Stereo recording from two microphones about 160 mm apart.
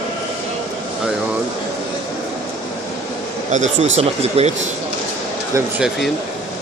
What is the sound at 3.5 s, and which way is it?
Speech, 50° right (ahead or behind).